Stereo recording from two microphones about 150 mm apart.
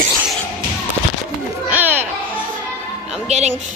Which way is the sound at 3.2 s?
50° right (ahead or behind).